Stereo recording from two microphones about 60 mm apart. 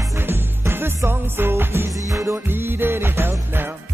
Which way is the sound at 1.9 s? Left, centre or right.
Right.